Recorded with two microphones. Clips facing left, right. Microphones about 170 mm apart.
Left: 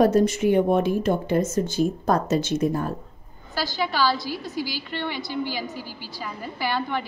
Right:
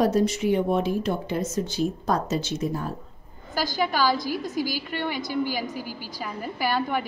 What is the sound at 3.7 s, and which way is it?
Speech, 45° right (ahead or behind).